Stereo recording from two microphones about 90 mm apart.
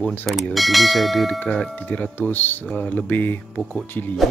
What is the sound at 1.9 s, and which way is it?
Speech, 20° left (ahead or behind).